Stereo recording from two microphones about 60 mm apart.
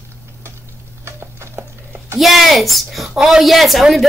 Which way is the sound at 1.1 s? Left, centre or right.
Right.